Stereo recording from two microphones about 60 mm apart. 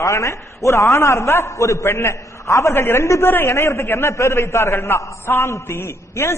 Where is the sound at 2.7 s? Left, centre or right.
Left.